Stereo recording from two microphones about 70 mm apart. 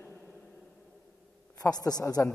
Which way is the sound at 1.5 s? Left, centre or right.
Left.